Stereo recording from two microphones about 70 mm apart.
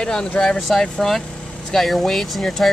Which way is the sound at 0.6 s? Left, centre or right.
Centre.